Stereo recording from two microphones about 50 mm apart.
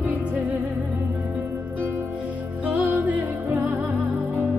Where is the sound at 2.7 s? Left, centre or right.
Right.